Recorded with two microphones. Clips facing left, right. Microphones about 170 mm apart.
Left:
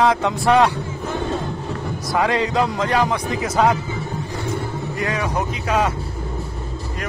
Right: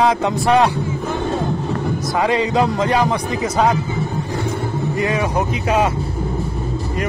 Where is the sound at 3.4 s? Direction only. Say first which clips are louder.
Right 1 dB; 5° left (ahead or behind).